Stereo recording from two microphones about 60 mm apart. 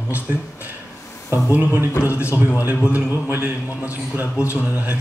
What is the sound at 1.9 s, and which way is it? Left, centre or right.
Speech, left.